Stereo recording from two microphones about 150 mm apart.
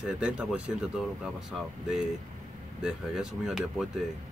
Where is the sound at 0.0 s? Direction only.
5° right (ahead or behind).